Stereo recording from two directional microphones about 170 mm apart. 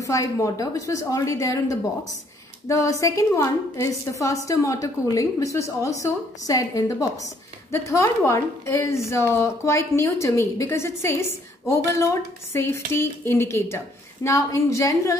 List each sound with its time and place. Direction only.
0.0 s a woman's voice: 20° left (ahead or behind)